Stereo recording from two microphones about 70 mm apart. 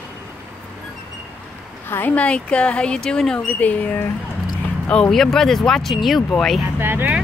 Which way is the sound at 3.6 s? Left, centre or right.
Left.